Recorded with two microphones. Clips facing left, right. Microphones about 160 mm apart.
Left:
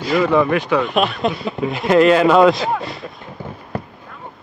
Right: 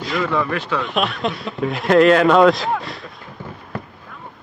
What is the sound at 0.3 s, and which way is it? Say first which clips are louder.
Speech: left 6 dB; 15° left (ahead or behind).